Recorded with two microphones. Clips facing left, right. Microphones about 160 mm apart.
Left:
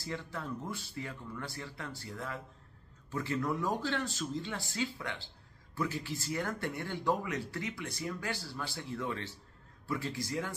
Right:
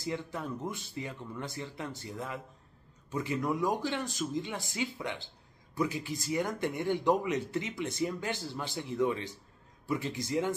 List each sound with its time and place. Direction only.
0.0 s speech: 15° right (ahead or behind)